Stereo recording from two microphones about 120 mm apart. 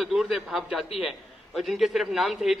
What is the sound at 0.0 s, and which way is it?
A man's voice, 5° right (ahead or behind).